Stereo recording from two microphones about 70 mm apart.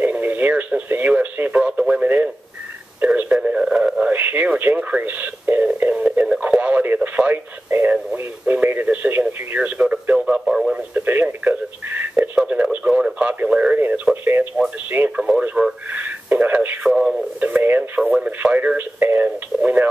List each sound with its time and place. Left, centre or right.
0.0 s radio: right
3.0 s telephone: centre
4.0 s radio: right
8.5 s radio: right; by 10.7 s centre
10.7 s radio: right
13.7 s radio: right
14.2 s a sound: right
14.9 s radio: right
15.6 s a sound: centre
15.9 s a sound: right
16.8 s radio: centre
17.4 s radio: right